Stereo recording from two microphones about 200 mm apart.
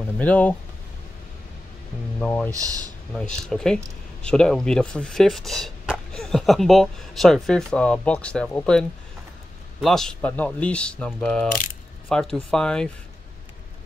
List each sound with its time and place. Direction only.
0.2 s speech: 5° left (ahead or behind)
2.1 s speech: 5° left (ahead or behind)
2.5 s speech: 15° right (ahead or behind)
3.2 s speech: 5° left (ahead or behind)